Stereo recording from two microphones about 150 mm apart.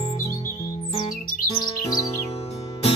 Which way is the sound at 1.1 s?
70° left (ahead or behind).